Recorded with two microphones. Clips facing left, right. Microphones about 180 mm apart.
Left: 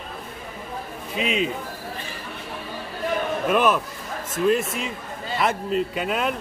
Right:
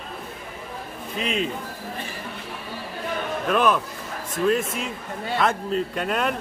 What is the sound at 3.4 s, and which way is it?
A man's voice, 5° left (ahead or behind).